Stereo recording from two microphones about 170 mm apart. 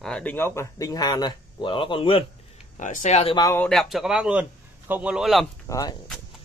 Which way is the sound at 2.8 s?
45° left (ahead or behind).